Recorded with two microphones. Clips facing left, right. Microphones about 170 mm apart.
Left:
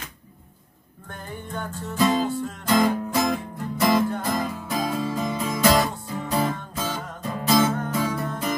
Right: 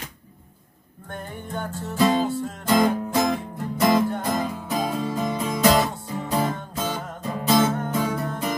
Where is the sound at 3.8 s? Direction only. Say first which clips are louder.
Right 1 dB; 20° right (ahead or behind).